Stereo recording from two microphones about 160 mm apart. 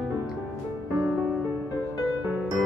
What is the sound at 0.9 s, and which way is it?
Music, 5° right (ahead or behind).